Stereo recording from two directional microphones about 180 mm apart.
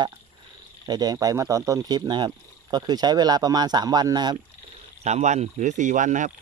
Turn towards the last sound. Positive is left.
turn(degrees=-45)  # may be behind; listen again after turning